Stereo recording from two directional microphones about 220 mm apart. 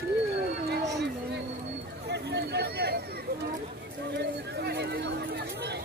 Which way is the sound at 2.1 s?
50° right (ahead or behind).